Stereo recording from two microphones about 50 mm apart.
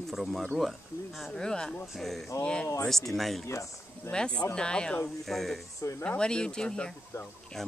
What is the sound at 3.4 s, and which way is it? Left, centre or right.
Speech, left.